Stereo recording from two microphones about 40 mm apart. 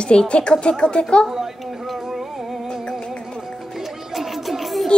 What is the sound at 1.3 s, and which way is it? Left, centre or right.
Music, centre.